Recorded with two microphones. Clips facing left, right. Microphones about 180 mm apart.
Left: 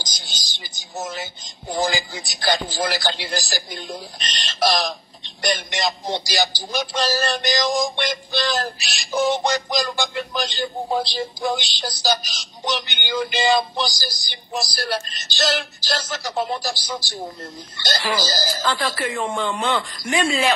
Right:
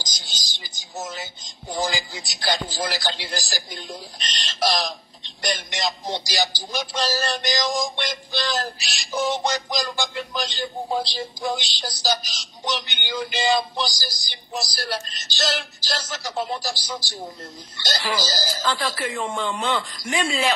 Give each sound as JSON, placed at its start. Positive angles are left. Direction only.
{"t": 0.0, "sound": "speech", "side_deg": 60}